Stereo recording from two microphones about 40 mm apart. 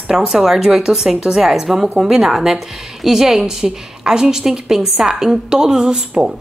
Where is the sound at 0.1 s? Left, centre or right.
Centre.